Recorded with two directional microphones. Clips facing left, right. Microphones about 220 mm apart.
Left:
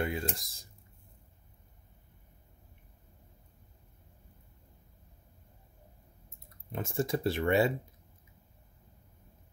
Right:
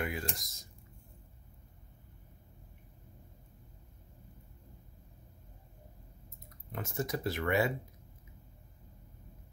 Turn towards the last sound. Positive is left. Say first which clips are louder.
# left 4 dB
turn(degrees=30)  # may be behind; listen again after turning